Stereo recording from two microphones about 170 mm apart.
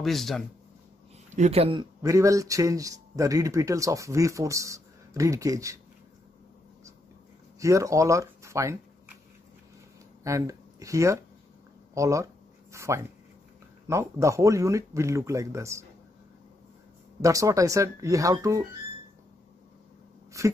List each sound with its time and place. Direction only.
0.0 s speech: centre (ahead or behind)
1.3 s speech: 40° right (ahead or behind); by 5.8 s 20° right (ahead or behind)
7.5 s speech: 20° right (ahead or behind)
10.2 s speech: 20° right (ahead or behind)
17.2 s speech: 20° right (ahead or behind)
20.4 s speech: 20° right (ahead or behind)